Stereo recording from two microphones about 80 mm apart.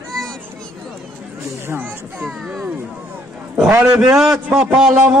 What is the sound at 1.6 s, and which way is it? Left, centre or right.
Children playing, right.